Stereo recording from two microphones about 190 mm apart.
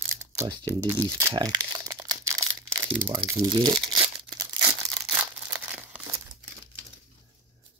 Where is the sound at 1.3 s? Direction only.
20° right (ahead or behind).